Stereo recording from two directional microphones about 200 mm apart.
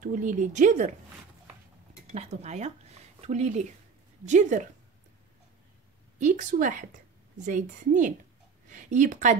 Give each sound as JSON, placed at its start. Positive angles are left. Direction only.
{"t": 0.0, "sound": "a woman's voice", "side_deg": -40}
{"t": 2.1, "sound": "a woman's voice", "side_deg": -35}
{"t": 6.1, "sound": "a woman's voice", "side_deg": -40}